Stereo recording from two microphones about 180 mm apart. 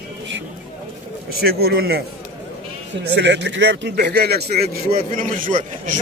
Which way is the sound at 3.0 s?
75° right (ahead or behind).